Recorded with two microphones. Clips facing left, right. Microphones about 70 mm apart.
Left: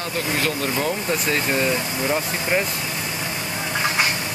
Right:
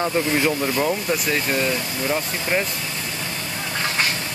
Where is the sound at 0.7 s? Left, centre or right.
Centre.